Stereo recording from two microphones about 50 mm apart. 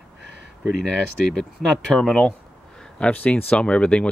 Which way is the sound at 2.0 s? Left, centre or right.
Centre.